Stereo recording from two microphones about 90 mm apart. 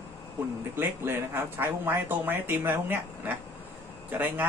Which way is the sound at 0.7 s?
25° right (ahead or behind).